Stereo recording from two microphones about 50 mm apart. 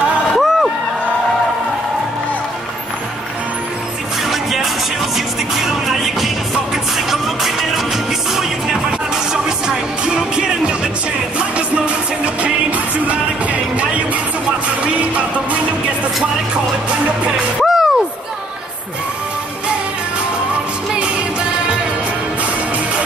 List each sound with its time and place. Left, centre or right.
0.3 s a sound: centre
4.3 s music: centre
9.3 s music: centre; by 15.6 s right
17.6 s music: centre